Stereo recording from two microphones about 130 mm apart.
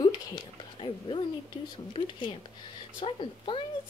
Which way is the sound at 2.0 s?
40° left (ahead or behind).